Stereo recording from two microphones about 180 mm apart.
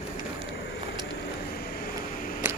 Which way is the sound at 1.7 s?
55° left (ahead or behind).